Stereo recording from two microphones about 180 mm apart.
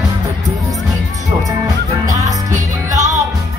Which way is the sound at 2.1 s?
20° right (ahead or behind).